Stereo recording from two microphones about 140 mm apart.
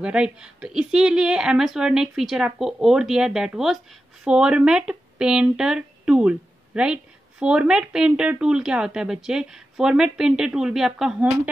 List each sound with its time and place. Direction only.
0.0 s speech: 5° right (ahead or behind)